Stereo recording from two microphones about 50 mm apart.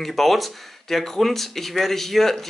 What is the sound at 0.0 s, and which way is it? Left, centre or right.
Speech, centre.